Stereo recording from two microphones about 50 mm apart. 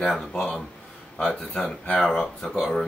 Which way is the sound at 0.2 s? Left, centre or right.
Centre.